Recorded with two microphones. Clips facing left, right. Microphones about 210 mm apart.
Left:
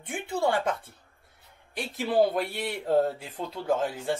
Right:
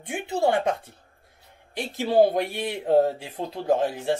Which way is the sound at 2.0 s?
25° right (ahead or behind).